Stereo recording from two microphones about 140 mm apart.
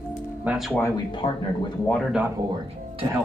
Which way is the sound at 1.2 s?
40° left (ahead or behind).